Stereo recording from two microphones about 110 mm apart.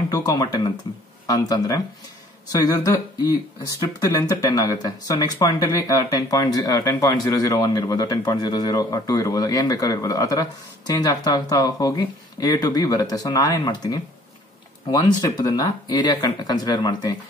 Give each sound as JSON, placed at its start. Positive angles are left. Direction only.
{"t": 0.1, "sound": "speech", "side_deg": 35}